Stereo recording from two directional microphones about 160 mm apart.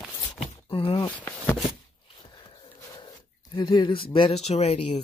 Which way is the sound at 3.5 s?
25° left (ahead or behind).